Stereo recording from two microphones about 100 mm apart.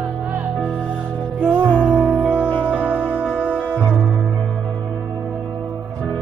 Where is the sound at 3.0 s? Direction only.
5° left (ahead or behind).